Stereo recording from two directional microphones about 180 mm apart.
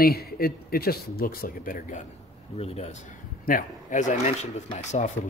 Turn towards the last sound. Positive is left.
turn(degrees=40)  # may be behind; listen again after turning